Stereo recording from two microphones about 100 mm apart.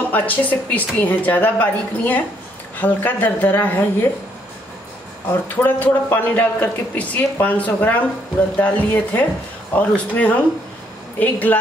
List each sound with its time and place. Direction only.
0.1 s a man's voice: 15° left (ahead or behind)
5.6 s a man's voice: 20° left (ahead or behind)